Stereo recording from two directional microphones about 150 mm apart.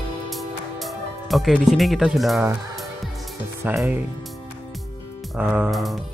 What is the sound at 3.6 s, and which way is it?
Speech, 10° right (ahead or behind).